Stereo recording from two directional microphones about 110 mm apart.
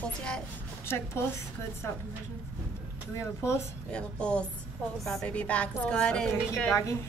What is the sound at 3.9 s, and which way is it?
A woman's voice, 10° left (ahead or behind).